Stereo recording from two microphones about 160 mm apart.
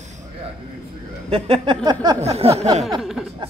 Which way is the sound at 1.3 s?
35° right (ahead or behind).